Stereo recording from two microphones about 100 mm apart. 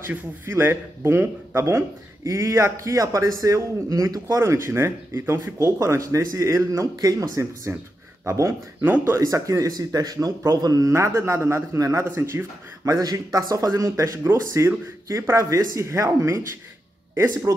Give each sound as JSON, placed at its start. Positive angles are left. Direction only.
{"t": 0.1, "sound": "speech", "side_deg": -25}
{"t": 8.8, "sound": "speech", "side_deg": -20}
{"t": 9.2, "sound": "speech", "side_deg": -30}
{"t": 12.8, "sound": "speech", "side_deg": -35}